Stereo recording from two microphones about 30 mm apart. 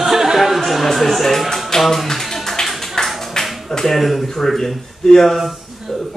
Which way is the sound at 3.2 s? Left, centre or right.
Centre.